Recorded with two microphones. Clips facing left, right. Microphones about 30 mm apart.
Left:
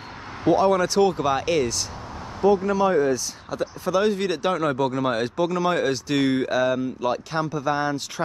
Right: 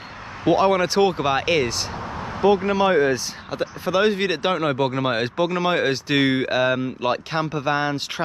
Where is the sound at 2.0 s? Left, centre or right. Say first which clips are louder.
Right 1 dB; right.